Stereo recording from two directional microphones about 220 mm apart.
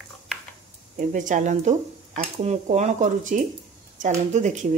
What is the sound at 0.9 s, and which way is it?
Speech, 35° right (ahead or behind).